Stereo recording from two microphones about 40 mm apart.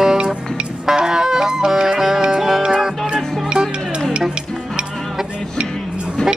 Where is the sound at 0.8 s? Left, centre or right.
Centre.